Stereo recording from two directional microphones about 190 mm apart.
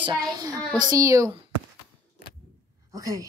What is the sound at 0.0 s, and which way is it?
A child's voice, 20° right (ahead or behind).